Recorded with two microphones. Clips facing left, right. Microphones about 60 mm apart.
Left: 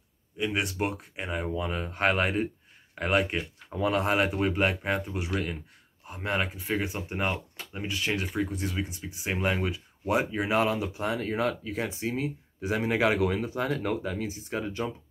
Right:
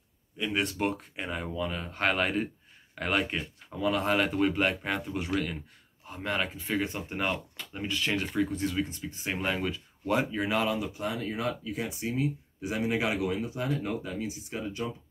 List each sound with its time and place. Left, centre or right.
0.4 s speech: centre
1.5 s speech: left
3.7 s speech: left
4.0 s speech: centre
4.3 s speech: centre; by 10.7 s left
11.0 s speech: left
14.5 s speech: left